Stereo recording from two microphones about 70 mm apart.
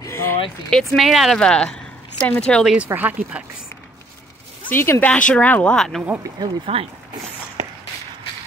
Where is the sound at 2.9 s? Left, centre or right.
Right.